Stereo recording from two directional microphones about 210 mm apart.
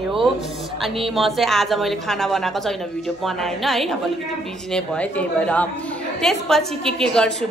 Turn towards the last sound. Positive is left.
turn(degrees=5)  # may be behind; listen again after turning